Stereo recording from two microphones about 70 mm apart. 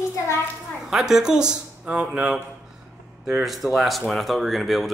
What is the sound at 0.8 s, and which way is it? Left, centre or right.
Speech, centre.